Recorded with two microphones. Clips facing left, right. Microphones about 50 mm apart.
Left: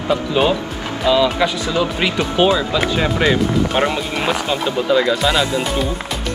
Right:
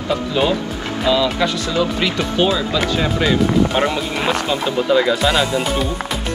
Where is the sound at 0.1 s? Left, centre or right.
Centre.